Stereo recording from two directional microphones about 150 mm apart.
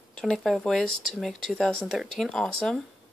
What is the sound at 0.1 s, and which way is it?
Speech, 5° left (ahead or behind).